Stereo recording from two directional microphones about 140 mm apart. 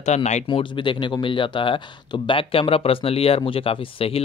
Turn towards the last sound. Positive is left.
turn(degrees=40)  # may be behind; listen again after turning